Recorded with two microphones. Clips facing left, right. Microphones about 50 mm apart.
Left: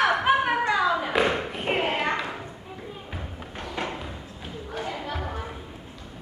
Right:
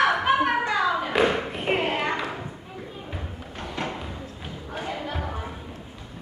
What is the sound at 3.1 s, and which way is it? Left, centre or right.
Music, centre.